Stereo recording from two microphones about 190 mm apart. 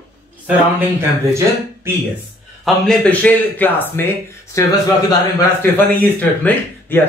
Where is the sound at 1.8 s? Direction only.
10° right (ahead or behind).